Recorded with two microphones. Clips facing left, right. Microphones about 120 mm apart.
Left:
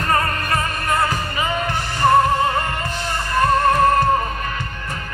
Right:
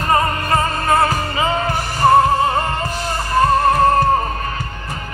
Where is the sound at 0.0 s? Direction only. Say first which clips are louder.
Right 3 dB; 20° right (ahead or behind).